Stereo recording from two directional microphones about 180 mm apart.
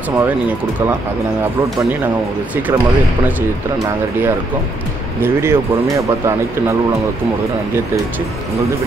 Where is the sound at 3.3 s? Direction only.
10° right (ahead or behind).